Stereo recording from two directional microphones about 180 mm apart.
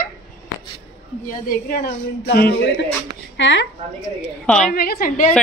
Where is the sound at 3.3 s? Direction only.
90° left.